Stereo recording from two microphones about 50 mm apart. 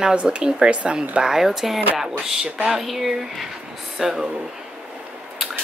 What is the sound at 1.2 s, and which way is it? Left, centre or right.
Speech, centre.